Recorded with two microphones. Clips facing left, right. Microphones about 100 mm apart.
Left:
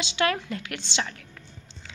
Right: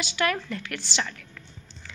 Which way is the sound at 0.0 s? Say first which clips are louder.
Left 1 dB; 20° left (ahead or behind).